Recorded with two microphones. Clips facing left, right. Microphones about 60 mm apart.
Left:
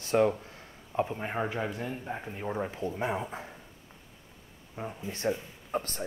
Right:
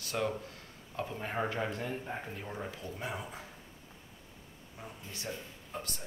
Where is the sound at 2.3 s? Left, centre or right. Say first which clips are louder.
Left 7 dB; left.